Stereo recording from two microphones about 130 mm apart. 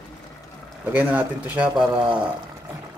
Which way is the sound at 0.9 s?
15° right (ahead or behind).